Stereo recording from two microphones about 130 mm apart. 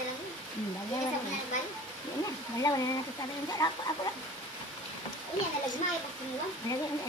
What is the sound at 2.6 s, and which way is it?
Speech, 25° left (ahead or behind).